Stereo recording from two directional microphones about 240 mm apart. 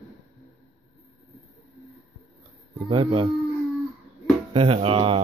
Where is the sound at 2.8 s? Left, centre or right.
Right.